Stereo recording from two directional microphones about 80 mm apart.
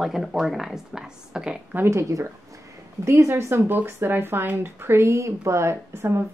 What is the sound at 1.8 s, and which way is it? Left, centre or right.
Speech, right.